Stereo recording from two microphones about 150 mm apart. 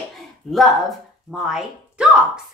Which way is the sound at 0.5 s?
Centre (ahead or behind).